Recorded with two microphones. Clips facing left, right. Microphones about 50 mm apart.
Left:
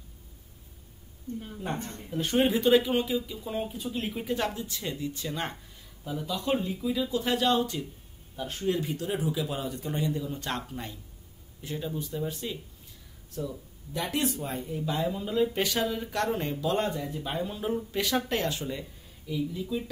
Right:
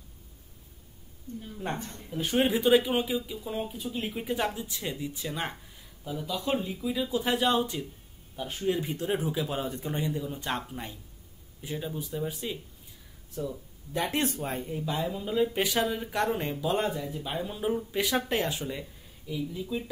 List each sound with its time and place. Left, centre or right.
2.1 s speech: centre
3.4 s speech: centre
8.8 s speech: right
9.8 s speech: centre
13.9 s speech: right
14.8 s speech: centre